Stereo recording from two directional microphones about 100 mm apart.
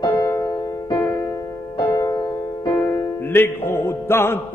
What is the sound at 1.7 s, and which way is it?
Music, 30° left (ahead or behind).